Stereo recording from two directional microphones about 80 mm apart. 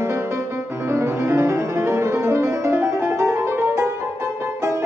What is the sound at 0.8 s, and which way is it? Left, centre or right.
Music, right.